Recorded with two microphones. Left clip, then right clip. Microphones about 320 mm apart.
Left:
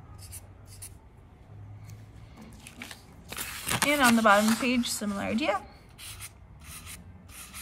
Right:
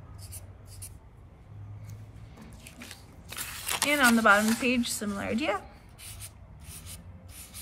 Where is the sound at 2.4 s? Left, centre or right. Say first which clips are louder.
Left 3 dB; centre.